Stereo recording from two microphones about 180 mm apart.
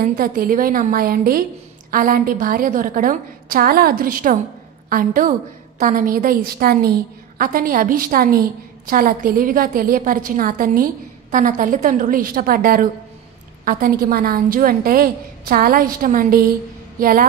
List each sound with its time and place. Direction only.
0.0 s a woman's voice: 50° right (ahead or behind)